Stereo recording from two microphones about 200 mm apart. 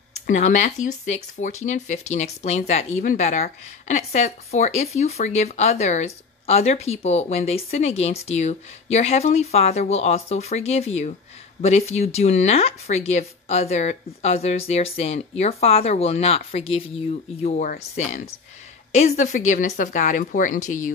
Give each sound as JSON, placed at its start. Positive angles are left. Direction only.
{"t": 0.3, "sound": "a woman's voice", "side_deg": 35}